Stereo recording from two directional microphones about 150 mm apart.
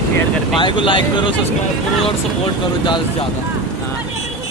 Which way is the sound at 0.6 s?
35° left (ahead or behind).